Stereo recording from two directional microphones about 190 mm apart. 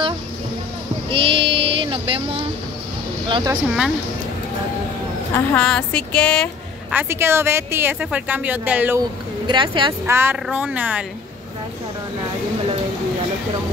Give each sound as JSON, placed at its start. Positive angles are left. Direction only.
{"t": 1.1, "sound": "a sound", "side_deg": -25}
{"t": 3.3, "sound": "a woman's voice", "side_deg": -25}
{"t": 5.3, "sound": "speech", "side_deg": 5}
{"t": 6.9, "sound": "a woman's voice", "side_deg": -10}
{"t": 9.5, "sound": "a woman's voice", "side_deg": -25}
{"t": 10.0, "sound": "a woman's voice", "side_deg": -10}